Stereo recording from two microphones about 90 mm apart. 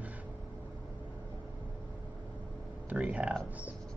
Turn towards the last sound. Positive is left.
turn(degrees=-15)  # may be behind; listen again after turning